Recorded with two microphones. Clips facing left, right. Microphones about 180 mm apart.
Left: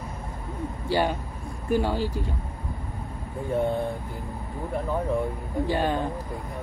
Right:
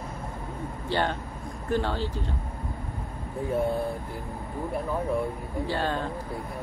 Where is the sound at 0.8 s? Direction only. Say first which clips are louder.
Left 3 dB; 10° left (ahead or behind).